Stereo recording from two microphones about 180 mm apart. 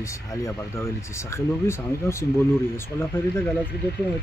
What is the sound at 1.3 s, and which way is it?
Speech, 15° left (ahead or behind).